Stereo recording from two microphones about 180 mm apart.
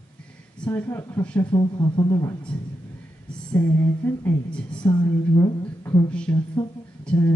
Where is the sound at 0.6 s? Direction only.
10° left (ahead or behind).